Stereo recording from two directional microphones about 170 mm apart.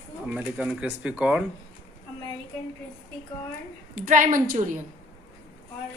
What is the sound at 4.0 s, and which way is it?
Speech, 50° right (ahead or behind).